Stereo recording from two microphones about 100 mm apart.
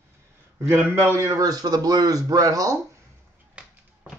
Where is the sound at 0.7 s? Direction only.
25° right (ahead or behind).